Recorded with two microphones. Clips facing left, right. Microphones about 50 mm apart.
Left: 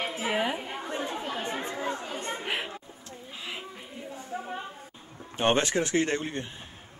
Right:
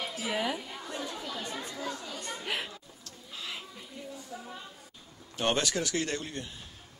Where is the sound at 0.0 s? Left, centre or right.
Left.